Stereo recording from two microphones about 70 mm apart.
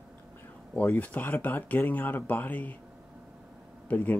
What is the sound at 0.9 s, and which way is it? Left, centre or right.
Speech, left.